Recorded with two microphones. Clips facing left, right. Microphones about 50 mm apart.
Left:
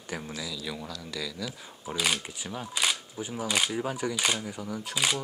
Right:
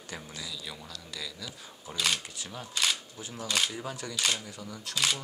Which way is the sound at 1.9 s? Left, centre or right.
Centre.